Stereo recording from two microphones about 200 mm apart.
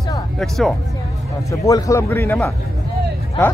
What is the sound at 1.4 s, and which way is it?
Speech, 15° left (ahead or behind).